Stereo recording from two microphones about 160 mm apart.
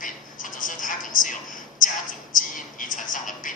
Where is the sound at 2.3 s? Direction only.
55° left (ahead or behind).